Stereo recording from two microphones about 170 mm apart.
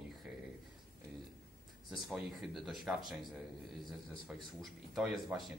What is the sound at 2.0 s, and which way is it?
Speech, 5° right (ahead or behind).